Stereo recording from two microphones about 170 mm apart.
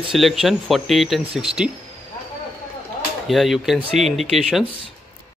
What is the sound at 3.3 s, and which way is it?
Speech, centre (ahead or behind).